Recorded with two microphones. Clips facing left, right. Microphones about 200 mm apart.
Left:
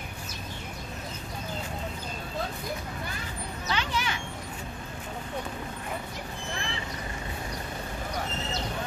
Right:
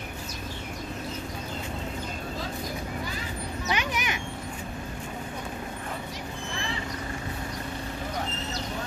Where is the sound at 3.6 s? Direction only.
15° right (ahead or behind).